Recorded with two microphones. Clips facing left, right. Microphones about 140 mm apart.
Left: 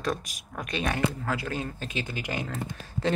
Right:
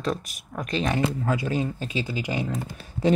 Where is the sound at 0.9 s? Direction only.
20° right (ahead or behind).